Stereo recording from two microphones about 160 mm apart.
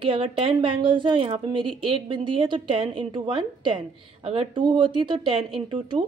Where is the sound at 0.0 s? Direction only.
35° right (ahead or behind).